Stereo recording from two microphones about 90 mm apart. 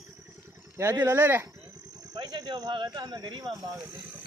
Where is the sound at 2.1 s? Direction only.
50° right (ahead or behind).